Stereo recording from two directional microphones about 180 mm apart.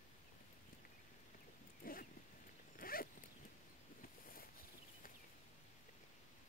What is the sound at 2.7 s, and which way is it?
Dog, 55° left (ahead or behind).